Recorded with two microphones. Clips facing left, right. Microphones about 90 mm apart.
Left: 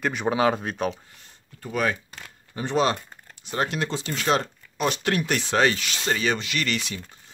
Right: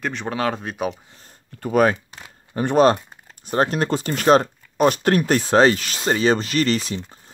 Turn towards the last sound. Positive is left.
turn(degrees=-35)  # may be behind; listen again after turning